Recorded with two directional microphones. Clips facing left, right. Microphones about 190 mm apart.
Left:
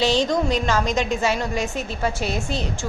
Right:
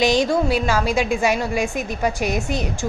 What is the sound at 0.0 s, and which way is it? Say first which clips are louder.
A woman's voice: right 2 dB; 15° right (ahead or behind).